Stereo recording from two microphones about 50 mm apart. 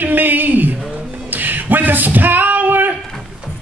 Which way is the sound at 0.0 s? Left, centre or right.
Right.